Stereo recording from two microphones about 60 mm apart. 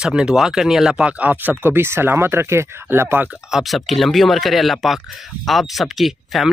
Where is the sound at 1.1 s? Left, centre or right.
Right.